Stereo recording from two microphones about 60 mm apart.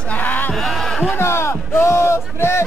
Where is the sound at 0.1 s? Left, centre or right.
Left.